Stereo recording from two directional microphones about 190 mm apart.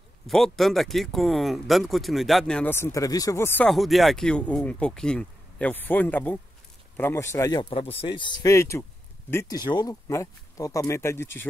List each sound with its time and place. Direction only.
0.3 s speech: centre (ahead or behind)
3.6 s speech: centre (ahead or behind); by 7.8 s 20° left (ahead or behind)
7.8 s speech: 30° left (ahead or behind)
8.4 s speech: 15° left (ahead or behind)